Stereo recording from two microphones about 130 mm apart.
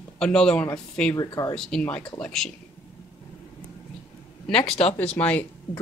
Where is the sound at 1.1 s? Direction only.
30° left (ahead or behind).